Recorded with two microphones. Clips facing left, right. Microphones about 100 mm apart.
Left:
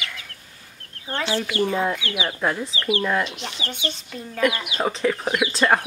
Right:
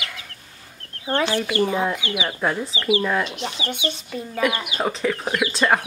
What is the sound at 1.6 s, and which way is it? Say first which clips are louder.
Speech: left 1 dB; 15° right (ahead or behind).